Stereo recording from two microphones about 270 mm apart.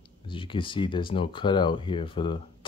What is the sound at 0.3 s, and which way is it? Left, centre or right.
Speech, centre.